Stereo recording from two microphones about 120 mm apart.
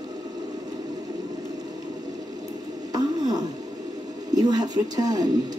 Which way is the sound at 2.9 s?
35° right (ahead or behind).